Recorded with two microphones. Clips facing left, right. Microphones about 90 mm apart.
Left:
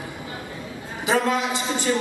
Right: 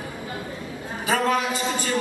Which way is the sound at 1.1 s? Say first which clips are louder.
Left 1 dB; 20° left (ahead or behind).